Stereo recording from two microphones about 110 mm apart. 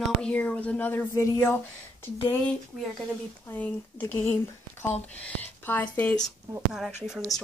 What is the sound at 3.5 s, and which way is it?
A woman's voice, 20° left (ahead or behind).